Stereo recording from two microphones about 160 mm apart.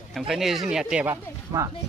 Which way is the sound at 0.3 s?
Centre (ahead or behind).